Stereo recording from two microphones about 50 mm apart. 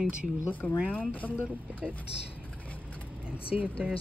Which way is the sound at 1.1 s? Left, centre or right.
Left.